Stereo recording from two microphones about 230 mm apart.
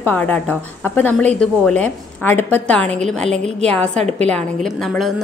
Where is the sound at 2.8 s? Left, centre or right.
Right.